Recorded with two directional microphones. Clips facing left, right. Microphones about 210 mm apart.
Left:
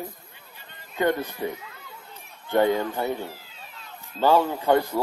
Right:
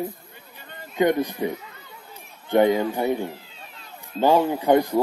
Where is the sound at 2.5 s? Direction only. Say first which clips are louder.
Right 3 dB; 15° right (ahead or behind).